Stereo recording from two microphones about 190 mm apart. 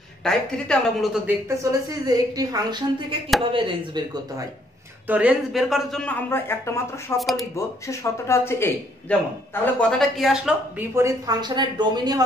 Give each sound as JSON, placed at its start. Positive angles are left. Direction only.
{"t": 0.2, "sound": "speech", "side_deg": 0}
{"t": 1.6, "sound": "a woman's voice", "side_deg": -20}
{"t": 5.0, "sound": "speech", "side_deg": -10}
{"t": 7.2, "sound": "speech", "side_deg": 0}
{"t": 7.5, "sound": "speech", "side_deg": 15}
{"t": 11.0, "sound": "a woman's voice", "side_deg": -20}